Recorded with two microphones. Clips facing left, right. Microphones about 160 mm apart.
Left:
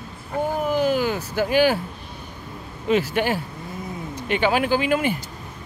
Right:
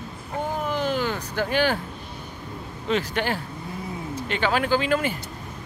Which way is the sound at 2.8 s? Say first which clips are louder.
Left 4 dB; 10° left (ahead or behind).